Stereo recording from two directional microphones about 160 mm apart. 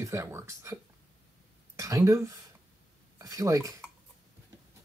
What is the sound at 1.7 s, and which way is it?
Speech, 20° right (ahead or behind).